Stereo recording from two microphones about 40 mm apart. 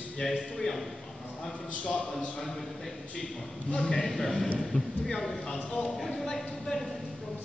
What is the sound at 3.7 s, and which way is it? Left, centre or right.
Speech, left.